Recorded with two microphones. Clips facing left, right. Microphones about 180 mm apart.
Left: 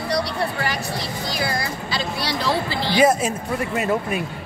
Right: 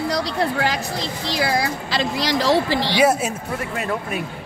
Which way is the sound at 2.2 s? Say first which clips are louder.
Right 5 dB; 90° right.